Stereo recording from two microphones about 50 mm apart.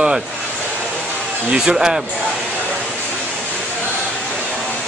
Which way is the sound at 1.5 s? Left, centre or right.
Centre.